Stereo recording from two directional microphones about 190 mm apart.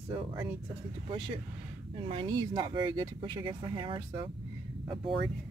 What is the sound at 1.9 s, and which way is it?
Speech, 30° right (ahead or behind).